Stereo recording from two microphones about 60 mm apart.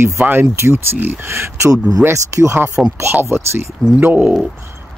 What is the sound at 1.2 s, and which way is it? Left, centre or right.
Speech, right.